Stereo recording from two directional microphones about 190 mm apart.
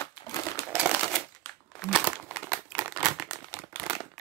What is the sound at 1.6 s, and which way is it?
Crumpling, centre (ahead or behind).